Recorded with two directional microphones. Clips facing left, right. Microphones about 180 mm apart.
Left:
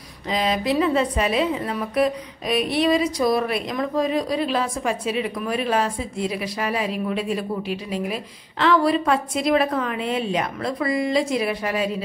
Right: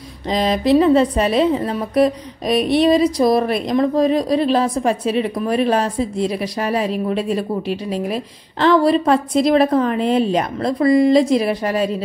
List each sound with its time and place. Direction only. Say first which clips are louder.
0.3 s a woman's voice: right 7 dB; 35° right (ahead or behind)